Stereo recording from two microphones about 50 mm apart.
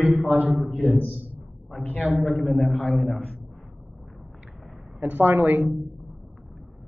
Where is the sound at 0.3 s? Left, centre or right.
Right.